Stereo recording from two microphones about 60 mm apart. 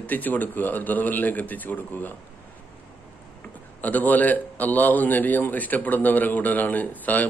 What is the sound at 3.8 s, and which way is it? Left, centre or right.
A man's voice, left.